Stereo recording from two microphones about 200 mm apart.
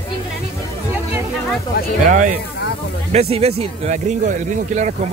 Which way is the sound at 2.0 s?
40° right (ahead or behind).